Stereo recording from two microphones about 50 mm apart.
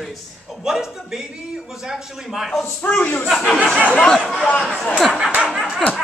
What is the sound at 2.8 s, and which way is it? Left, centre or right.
Speech, left.